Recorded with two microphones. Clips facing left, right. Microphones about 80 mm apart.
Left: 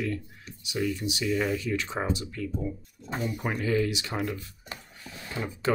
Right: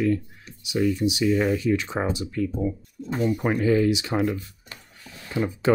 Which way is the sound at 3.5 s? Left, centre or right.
Right.